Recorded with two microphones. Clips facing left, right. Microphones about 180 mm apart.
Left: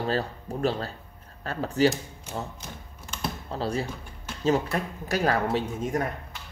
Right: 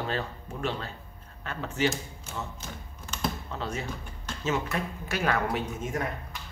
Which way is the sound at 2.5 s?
10° left (ahead or behind).